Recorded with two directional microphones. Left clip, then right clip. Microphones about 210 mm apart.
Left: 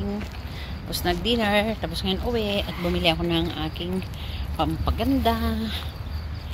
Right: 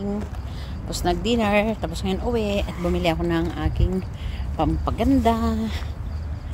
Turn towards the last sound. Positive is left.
turn(degrees=-20)  # may be behind; listen again after turning